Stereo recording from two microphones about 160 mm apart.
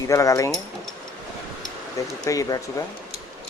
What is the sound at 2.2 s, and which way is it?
Speech, 20° left (ahead or behind).